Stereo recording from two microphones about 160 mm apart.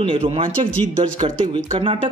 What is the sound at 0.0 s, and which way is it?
Speech, 35° right (ahead or behind).